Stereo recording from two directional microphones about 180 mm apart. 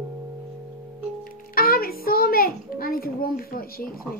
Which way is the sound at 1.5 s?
55° left (ahead or behind).